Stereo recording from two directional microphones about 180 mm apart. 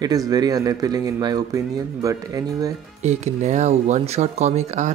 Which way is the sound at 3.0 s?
40° right (ahead or behind).